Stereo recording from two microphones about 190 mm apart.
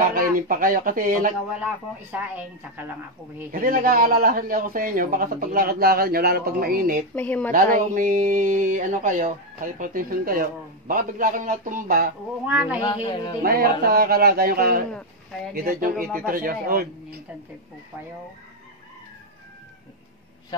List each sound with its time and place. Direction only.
0.1 s a man's voice: 50° right (ahead or behind)
2.1 s a woman's voice: 10° right (ahead or behind)
3.5 s a man's voice: 50° right (ahead or behind)
7.2 s speech: 10° left (ahead or behind)
7.5 s a man's voice: 45° right (ahead or behind)
12.4 s a woman's voice: 10° right (ahead or behind)
12.8 s speech: 25° left (ahead or behind)
13.4 s a man's voice: 50° right (ahead or behind)
14.9 s speech: 5° left (ahead or behind)
15.5 s a man's voice: 50° right (ahead or behind)